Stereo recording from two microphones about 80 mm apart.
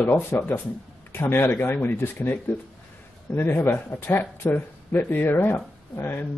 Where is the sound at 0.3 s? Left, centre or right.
Left.